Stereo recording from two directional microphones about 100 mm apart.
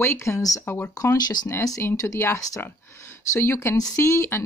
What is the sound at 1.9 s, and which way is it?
A woman's voice, 25° left (ahead or behind).